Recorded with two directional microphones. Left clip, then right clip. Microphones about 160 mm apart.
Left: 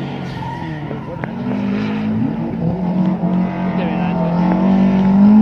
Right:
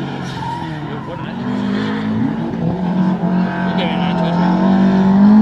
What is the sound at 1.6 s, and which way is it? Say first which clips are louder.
Vehicle: right 3 dB; 15° left (ahead or behind).